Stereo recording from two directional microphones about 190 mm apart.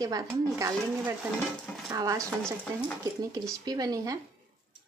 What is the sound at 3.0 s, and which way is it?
Speech, 15° right (ahead or behind).